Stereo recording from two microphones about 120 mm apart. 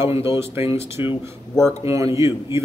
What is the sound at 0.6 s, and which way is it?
Speech, 55° left (ahead or behind).